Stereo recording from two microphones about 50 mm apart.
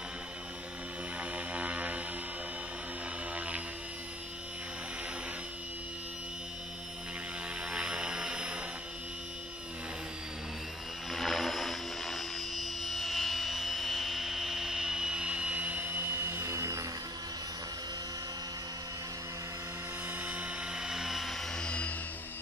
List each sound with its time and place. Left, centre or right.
1.2 s a sound: right
3.3 s music: right
7.7 s aircraft: centre
11.1 s aircraft: centre; by 16.8 s right
20.2 s helicopter: right
20.7 s helicopter: centre
21.5 s music: left